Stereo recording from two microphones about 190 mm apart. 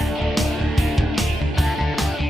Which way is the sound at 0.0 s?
Centre (ahead or behind).